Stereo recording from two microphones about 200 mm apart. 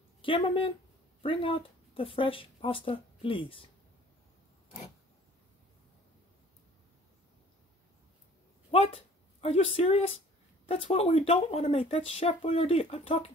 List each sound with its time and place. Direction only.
0.2 s speech: 25° left (ahead or behind)
8.6 s speech: 25° left (ahead or behind)